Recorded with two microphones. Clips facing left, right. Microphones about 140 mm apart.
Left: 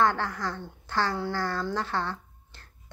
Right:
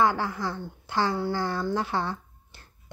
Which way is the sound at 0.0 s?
10° right (ahead or behind).